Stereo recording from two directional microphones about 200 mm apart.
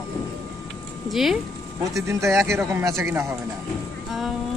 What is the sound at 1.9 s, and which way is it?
Speech, 15° right (ahead or behind).